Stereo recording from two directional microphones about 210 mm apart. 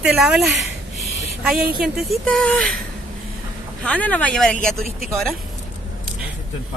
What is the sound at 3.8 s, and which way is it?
Speech, 5° left (ahead or behind).